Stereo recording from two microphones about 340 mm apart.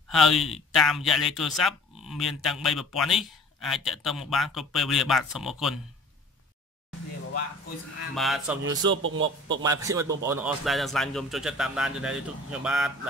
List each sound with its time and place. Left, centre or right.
0.1 s speech: centre
8.1 s speech: centre
8.9 s a man's voice: right
9.6 s speech: centre